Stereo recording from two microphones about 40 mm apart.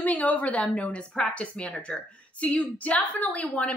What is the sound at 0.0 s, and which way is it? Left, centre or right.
A woman's voice, left.